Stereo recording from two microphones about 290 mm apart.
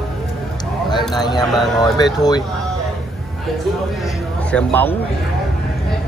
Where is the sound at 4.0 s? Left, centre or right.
Centre.